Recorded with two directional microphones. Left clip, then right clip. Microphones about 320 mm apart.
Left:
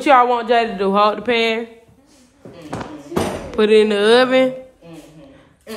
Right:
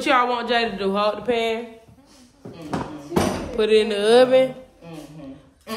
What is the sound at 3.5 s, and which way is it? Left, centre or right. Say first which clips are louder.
Speech: left 6 dB; centre.